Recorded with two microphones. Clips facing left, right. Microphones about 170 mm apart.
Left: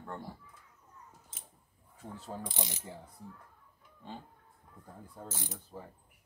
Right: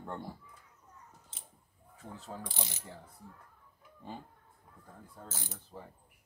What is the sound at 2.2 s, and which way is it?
Mechanisms, 15° left (ahead or behind).